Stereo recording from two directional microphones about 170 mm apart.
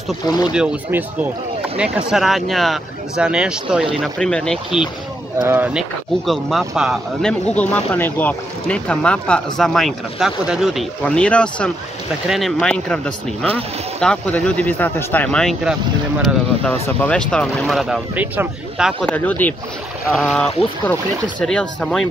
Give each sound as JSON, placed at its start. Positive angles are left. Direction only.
{"t": 0.3, "sound": "speech", "side_deg": 25}
{"t": 0.6, "sound": "speech", "side_deg": -10}
{"t": 5.4, "sound": "speech", "side_deg": -10}
{"t": 19.0, "sound": "speech", "side_deg": 10}